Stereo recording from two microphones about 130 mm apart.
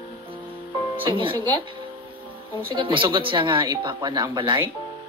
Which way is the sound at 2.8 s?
40° right (ahead or behind).